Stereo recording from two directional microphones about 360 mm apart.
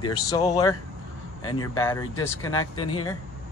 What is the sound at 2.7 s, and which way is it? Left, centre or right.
Speech, left.